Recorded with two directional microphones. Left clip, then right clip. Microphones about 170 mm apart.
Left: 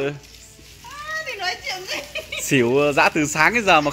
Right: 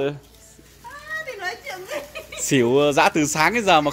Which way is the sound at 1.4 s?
10° right (ahead or behind).